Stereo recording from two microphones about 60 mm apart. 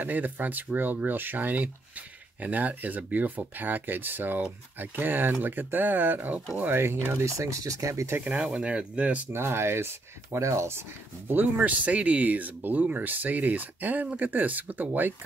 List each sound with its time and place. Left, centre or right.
0.0 s speech: right
6.7 s speech: right
7.3 s speech: right
8.2 s speech: centre
9.3 s speech: right